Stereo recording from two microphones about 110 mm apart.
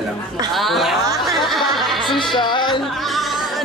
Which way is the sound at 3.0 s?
Centre (ahead or behind).